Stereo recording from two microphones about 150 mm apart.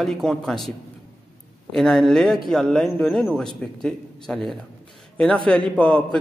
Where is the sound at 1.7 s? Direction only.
5° left (ahead or behind).